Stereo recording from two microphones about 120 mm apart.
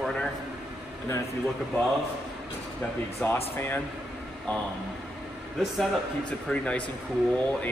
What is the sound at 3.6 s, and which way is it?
Speech, 20° left (ahead or behind).